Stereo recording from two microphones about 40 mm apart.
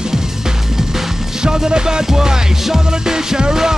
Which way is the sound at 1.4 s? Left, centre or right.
Centre.